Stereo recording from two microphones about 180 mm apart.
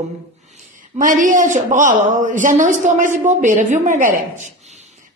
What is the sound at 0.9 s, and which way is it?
A woman's voice, 45° right (ahead or behind).